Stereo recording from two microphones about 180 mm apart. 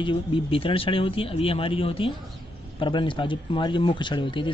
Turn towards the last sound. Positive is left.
turn(degrees=25)  # may be behind; listen again after turning